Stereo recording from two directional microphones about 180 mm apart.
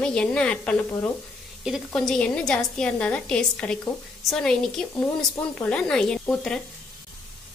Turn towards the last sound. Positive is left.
turn(degrees=5)  # may be behind; listen again after turning